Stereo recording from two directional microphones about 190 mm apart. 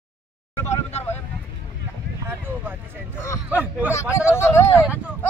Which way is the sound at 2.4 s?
10° right (ahead or behind).